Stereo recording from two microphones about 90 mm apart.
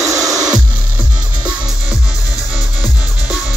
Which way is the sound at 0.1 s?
40° right (ahead or behind).